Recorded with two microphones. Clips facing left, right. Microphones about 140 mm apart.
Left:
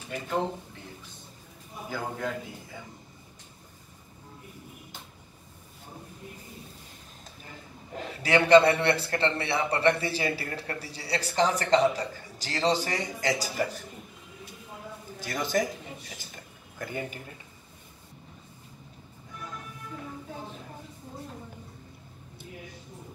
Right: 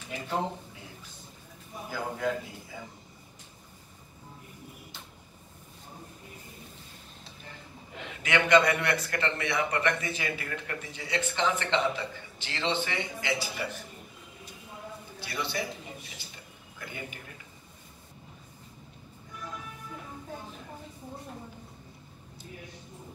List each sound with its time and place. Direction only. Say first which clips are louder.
1.9 s a man's voice: right 1 dB; centre (ahead or behind)
7.9 s a man's voice: left 4 dB; 40° left (ahead or behind)
15.1 s a man's voice: left 6 dB; 45° left (ahead or behind)
16.7 s a man's voice: left 7 dB; 40° left (ahead or behind)